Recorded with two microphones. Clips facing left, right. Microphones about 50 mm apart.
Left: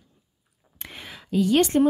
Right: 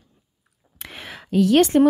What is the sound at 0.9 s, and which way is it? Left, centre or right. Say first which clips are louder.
Speech: right 4 dB; right.